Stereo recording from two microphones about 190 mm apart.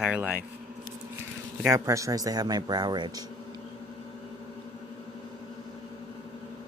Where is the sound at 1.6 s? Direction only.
15° right (ahead or behind).